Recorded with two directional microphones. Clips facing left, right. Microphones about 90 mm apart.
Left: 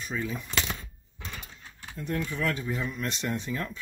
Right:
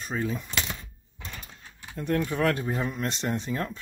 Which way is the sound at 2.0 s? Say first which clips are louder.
Right 5 dB; 60° right (ahead or behind).